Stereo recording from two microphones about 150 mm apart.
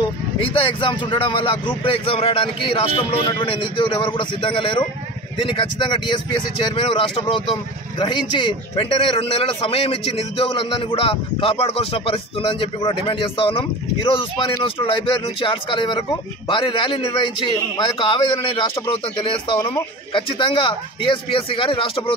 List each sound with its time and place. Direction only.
0.4 s speech: 35° left (ahead or behind)